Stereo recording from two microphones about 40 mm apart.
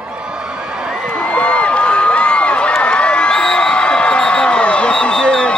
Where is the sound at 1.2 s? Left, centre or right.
Left.